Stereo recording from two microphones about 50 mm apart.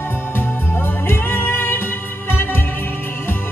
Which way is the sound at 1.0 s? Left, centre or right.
Left.